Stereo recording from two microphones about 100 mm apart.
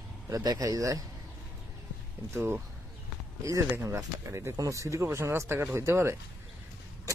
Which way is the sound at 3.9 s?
30° right (ahead or behind).